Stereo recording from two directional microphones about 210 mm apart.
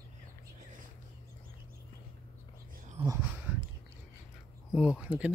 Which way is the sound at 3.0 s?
25° right (ahead or behind).